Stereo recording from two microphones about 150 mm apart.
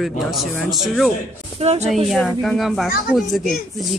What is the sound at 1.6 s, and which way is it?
Speech, 45° right (ahead or behind).